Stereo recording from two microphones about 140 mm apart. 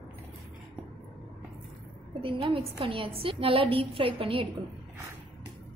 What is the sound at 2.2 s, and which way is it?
A woman's voice, 40° right (ahead or behind).